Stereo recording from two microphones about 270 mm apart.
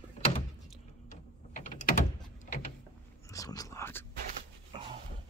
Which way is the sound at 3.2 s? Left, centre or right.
Centre.